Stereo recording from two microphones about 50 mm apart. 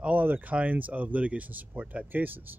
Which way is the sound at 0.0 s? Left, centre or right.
Right.